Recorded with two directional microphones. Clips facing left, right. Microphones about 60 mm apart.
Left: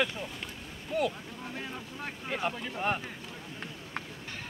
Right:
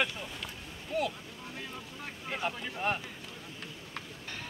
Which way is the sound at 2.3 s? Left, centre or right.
Centre.